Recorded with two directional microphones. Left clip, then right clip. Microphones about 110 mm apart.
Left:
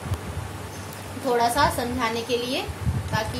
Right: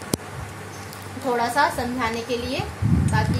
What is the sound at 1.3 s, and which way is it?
A woman's voice, 30° right (ahead or behind).